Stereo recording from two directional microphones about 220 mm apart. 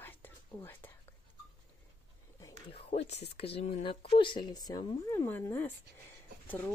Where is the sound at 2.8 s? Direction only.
30° left (ahead or behind); by 6.7 s 10° left (ahead or behind).